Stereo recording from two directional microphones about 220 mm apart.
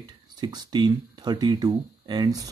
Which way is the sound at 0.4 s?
20° right (ahead or behind).